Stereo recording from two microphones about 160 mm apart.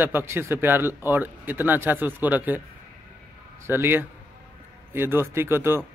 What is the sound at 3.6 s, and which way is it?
A man's voice, 15° right (ahead or behind).